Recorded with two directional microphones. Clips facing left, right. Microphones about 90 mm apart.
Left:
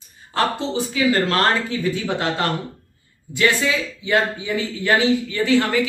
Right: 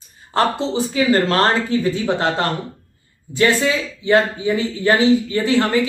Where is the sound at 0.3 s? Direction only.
35° right (ahead or behind).